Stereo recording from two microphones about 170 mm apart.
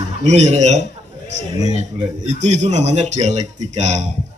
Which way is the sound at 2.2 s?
40° right (ahead or behind).